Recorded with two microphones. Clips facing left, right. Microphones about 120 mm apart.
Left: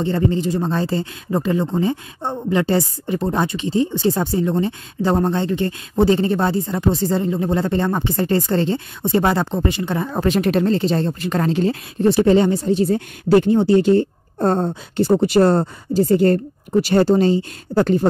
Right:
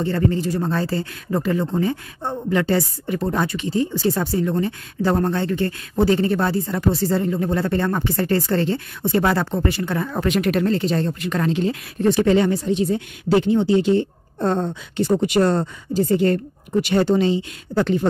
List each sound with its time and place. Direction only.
0.0 s speech: 20° left (ahead or behind); by 18.0 s 40° left (ahead or behind)